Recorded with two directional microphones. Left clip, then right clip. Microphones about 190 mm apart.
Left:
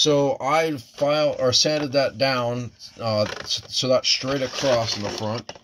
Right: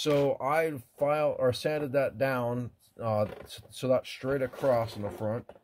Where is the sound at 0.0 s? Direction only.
Centre (ahead or behind).